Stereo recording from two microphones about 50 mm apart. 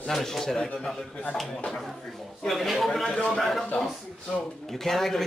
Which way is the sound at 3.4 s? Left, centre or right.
Centre.